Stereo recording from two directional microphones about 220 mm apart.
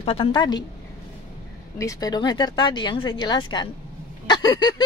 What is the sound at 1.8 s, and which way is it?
Speech, 15° left (ahead or behind).